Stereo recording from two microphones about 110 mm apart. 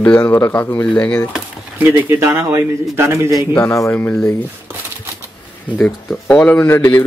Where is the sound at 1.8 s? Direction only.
25° right (ahead or behind).